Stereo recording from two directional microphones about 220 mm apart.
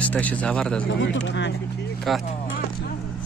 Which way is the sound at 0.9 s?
55° left (ahead or behind).